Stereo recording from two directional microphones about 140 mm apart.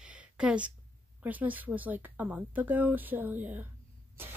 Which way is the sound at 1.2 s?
10° right (ahead or behind).